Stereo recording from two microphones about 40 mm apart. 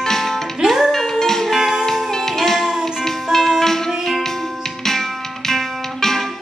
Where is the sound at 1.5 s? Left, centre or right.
Centre.